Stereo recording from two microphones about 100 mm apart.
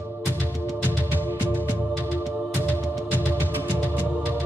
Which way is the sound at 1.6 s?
20° right (ahead or behind).